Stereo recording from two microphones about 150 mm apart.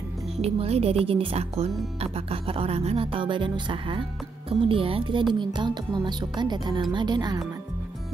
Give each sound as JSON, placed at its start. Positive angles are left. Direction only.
{"t": 0.4, "sound": "a woman's voice", "side_deg": -40}